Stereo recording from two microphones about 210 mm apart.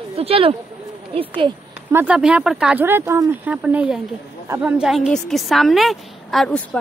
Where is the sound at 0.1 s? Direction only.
30° right (ahead or behind).